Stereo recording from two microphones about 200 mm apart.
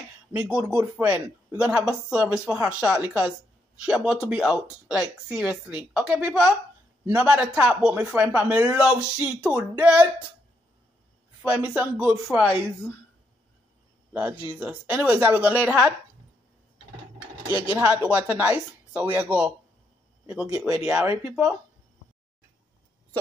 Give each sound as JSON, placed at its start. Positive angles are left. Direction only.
{"t": 0.3, "sound": "speech", "side_deg": -5}
{"t": 11.4, "sound": "speech", "side_deg": -5}
{"t": 14.1, "sound": "speech", "side_deg": -10}
{"t": 17.7, "sound": "speech", "side_deg": -5}
{"t": 20.5, "sound": "speech", "side_deg": -5}